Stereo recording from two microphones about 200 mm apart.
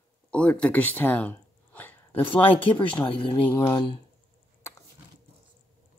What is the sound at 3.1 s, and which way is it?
Speech, 25° left (ahead or behind).